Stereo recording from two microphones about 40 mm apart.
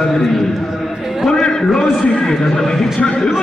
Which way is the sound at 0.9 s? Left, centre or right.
Centre.